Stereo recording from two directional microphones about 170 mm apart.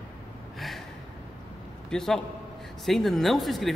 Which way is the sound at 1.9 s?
5° left (ahead or behind).